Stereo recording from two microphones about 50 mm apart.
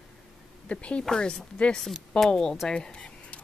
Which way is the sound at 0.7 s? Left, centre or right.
Left.